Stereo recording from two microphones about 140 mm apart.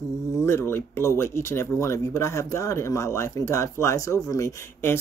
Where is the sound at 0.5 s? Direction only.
20° left (ahead or behind).